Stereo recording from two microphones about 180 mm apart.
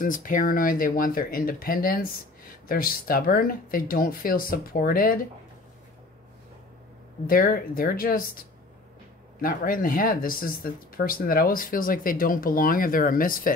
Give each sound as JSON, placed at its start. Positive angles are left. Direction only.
{"t": 0.0, "sound": "speech", "side_deg": 50}
{"t": 7.2, "sound": "speech", "side_deg": 55}